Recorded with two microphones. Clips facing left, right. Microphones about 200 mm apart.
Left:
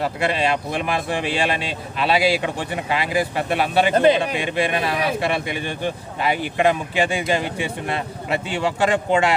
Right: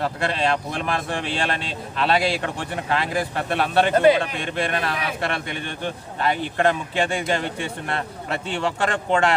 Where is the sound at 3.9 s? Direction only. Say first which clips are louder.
Even; 20° left (ahead or behind).